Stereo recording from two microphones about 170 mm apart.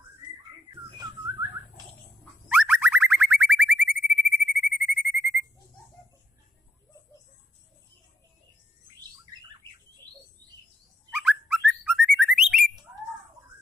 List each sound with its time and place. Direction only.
0.8 s whistling: 25° right (ahead or behind)
2.4 s boing: 5° right (ahead or behind)
4.0 s a sound: centre (ahead or behind)
11.1 s bird: 5° right (ahead or behind)